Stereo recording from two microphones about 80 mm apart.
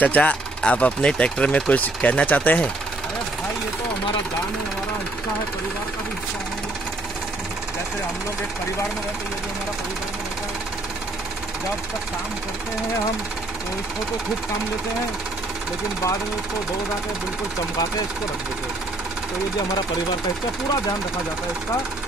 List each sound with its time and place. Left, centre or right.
0.0 s speech: centre